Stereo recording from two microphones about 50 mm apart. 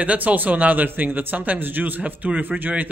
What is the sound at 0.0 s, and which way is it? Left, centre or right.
A man's voice, right.